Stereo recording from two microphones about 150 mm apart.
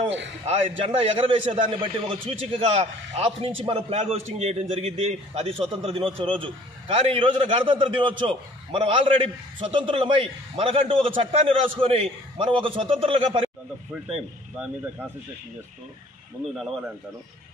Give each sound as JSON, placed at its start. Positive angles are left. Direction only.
{"t": 0.5, "sound": "a man's voice", "side_deg": -40}
{"t": 14.6, "sound": "speech", "side_deg": -10}
{"t": 16.5, "sound": "a man's voice", "side_deg": 0}